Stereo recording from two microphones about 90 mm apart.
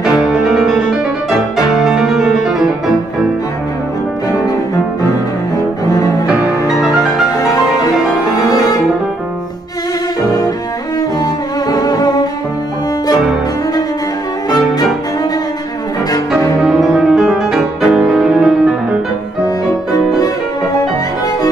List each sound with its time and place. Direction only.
0.0 s music: 5° right (ahead or behind)
1.9 s music: 5° right (ahead or behind)
5.9 s cello: 45° left (ahead or behind)
11.7 s music: 45° left (ahead or behind)
16.6 s music: 5° right (ahead or behind)